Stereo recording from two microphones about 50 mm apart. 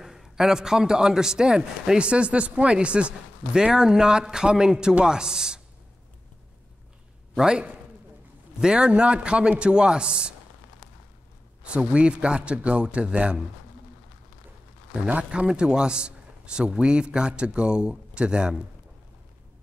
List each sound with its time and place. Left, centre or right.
0.0 s a man's voice: centre
7.3 s a man's voice: centre
11.6 s a man's voice: right
15.0 s speech: right
15.4 s a man's voice: centre